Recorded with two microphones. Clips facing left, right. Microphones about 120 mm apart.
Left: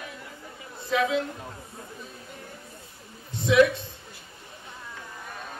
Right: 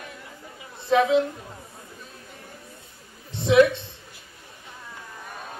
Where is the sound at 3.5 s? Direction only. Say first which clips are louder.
Right 3 dB; 25° right (ahead or behind).